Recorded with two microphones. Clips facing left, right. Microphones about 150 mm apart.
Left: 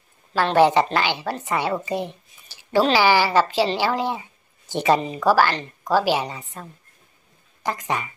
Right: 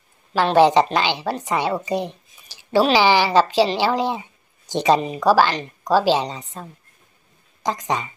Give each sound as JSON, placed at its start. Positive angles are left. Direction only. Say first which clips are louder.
{"t": 0.3, "sound": "a woman's voice", "louder": "right 2 dB", "side_deg": -15}